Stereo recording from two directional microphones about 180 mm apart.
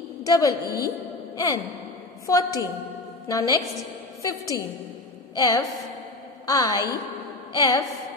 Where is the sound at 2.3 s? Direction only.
20° left (ahead or behind).